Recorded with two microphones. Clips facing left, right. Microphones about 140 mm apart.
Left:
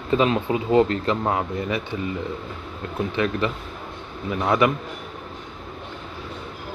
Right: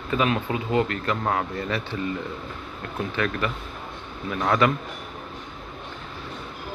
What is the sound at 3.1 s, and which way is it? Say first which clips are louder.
Speech: left 3 dB; 20° left (ahead or behind).